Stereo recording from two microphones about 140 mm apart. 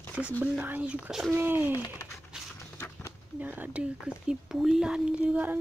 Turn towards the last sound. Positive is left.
turn(degrees=-10)  # may be behind; listen again after turning